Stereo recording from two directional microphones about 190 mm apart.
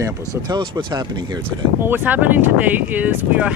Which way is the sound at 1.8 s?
10° right (ahead or behind).